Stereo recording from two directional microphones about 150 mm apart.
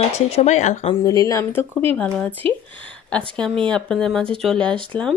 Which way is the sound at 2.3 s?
35° right (ahead or behind).